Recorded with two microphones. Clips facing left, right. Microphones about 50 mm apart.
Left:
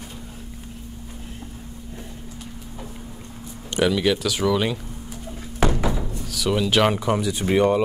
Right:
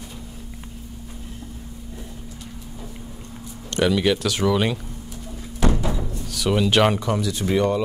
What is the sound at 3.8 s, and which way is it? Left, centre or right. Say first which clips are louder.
Speech: right 1 dB; centre.